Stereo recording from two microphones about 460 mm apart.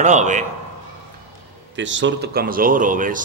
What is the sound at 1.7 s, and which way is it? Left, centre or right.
Speech, right.